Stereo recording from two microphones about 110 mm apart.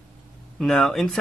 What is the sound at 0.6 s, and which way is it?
Speech, 5° left (ahead or behind).